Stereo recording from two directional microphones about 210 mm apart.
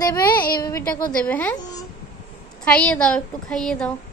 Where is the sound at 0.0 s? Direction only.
20° left (ahead or behind).